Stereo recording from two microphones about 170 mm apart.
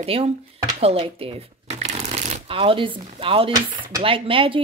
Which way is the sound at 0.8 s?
35° right (ahead or behind).